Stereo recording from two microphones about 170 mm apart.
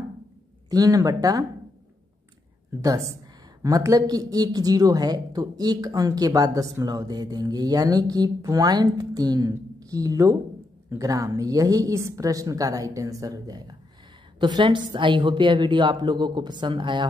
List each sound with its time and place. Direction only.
0.7 s speech: 20° right (ahead or behind)
2.8 s speech: 20° right (ahead or behind)